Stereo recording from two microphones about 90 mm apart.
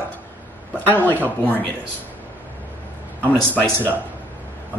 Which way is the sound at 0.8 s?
20° left (ahead or behind).